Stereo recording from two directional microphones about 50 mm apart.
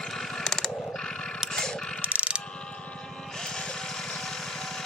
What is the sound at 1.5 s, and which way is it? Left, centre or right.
Mechanisms, centre.